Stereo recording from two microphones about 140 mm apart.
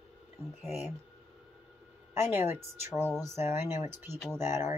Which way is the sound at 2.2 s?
15° right (ahead or behind).